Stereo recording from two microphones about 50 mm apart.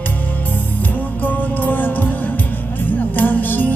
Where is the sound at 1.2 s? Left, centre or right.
Left.